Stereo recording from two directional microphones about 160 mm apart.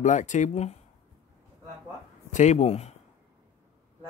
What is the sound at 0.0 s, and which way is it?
Speech, 50° left (ahead or behind).